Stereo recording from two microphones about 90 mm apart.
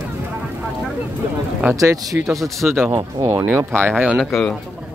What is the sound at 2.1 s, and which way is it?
Speech, centre (ahead or behind).